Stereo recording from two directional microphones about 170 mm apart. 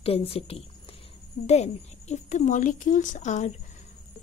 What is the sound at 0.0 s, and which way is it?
A woman's voice, 35° left (ahead or behind).